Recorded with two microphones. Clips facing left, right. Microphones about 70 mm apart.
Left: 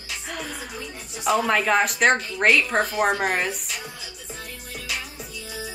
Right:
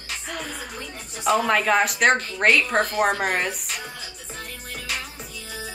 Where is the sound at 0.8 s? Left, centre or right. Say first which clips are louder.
Right 1 dB; centre.